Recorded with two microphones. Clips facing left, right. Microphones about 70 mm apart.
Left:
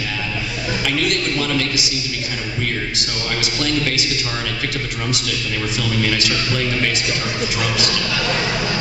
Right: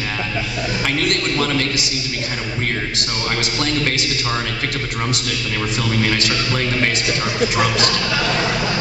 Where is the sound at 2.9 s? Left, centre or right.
Right.